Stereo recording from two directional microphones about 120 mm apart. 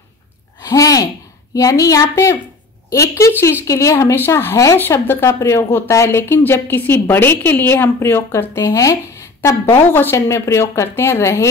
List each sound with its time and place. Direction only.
0.6 s a woman's voice: 30° left (ahead or behind)